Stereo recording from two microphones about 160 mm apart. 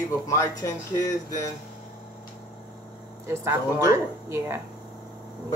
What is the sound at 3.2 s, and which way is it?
Speech, 15° right (ahead or behind).